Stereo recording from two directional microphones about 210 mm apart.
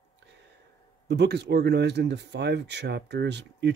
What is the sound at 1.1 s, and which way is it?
Speech, 55° right (ahead or behind).